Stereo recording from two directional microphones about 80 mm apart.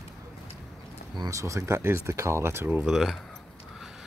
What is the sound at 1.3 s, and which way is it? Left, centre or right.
Speech, right.